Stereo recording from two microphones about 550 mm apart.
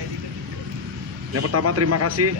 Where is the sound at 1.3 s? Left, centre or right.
Right.